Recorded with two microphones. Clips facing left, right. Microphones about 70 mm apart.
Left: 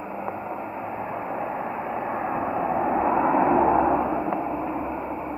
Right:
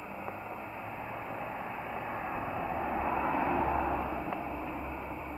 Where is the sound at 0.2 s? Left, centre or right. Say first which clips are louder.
Left 10 dB; left.